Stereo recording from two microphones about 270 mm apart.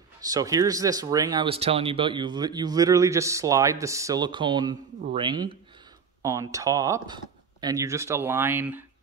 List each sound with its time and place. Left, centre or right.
0.2 s speech: centre